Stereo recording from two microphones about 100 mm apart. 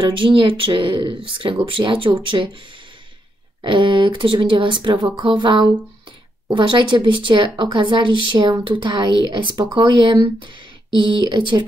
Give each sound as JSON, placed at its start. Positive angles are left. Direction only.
{"t": 0.0, "sound": "speech", "side_deg": -55}
{"t": 3.6, "sound": "speech", "side_deg": -55}